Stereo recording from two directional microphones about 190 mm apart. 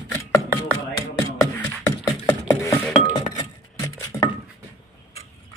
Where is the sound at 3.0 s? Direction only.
25° left (ahead or behind).